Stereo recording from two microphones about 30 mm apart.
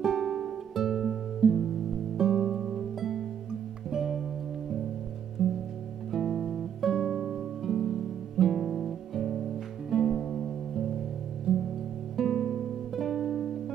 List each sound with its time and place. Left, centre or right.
0.0 s music: centre
1.4 s music: right
2.1 s music: centre
2.5 s music: centre
5.4 s music: centre